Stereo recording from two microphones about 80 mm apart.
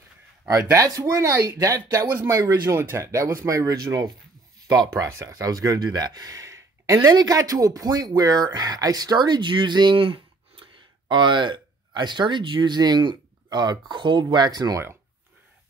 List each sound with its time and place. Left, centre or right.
0.7 s speech: right
5.0 s speech: right